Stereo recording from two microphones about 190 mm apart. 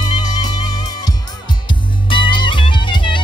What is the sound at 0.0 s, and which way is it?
Music, 20° left (ahead or behind).